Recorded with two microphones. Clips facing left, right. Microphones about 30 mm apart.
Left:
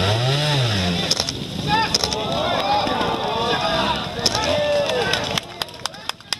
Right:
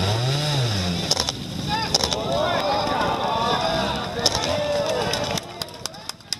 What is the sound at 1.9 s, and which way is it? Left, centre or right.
Boat, centre.